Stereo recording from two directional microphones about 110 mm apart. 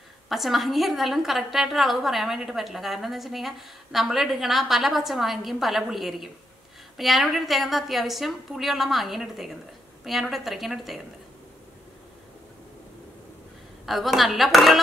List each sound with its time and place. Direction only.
0.3 s a woman's voice: centre (ahead or behind)
13.8 s a woman's voice: centre (ahead or behind)